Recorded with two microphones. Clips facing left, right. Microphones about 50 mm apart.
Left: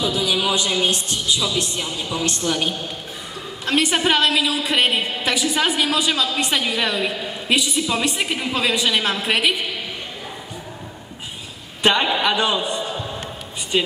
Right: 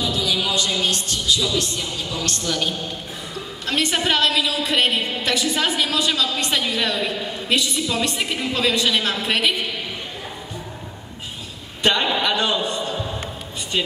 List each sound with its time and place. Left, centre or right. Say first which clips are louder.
0.0 s a woman's voice: left 2 dB; centre
11.8 s a man's voice: left 2 dB; centre